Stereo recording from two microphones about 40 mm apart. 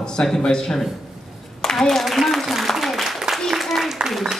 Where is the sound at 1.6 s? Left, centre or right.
Centre.